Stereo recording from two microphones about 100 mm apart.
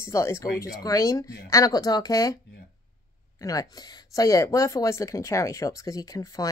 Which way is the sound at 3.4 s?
35° left (ahead or behind).